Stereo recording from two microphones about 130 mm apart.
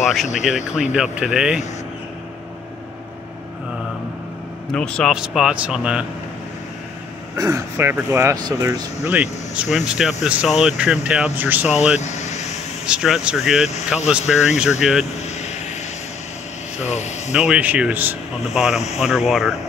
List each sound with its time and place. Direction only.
0.0 s speech: centre (ahead or behind)
4.7 s speech: 5° left (ahead or behind)
5.1 s speech: 5° right (ahead or behind)
7.3 s speech: 25° right (ahead or behind)
9.1 s speech: 10° right (ahead or behind)
12.0 s vehicle: 60° left (ahead or behind)
12.8 s speech: 5° right (ahead or behind)
15.2 s vehicle: 60° left (ahead or behind)
16.8 s speech: 65° left (ahead or behind)
17.3 s speech: 5° right (ahead or behind)